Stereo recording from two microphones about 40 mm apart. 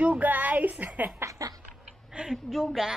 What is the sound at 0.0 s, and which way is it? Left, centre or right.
Speech, right.